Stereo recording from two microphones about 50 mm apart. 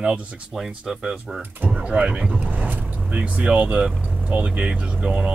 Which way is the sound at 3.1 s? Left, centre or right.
Right.